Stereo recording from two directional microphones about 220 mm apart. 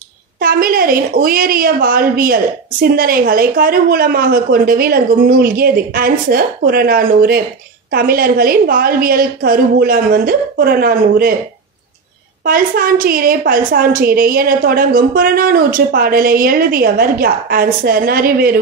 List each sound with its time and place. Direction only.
0.4 s a woman's voice: 40° right (ahead or behind)
12.4 s a woman's voice: 40° right (ahead or behind)